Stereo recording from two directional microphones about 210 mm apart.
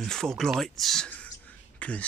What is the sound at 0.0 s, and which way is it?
Speech, 5° left (ahead or behind).